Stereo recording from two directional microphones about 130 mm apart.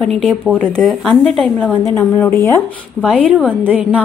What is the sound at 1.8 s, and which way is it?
Speech, 20° left (ahead or behind).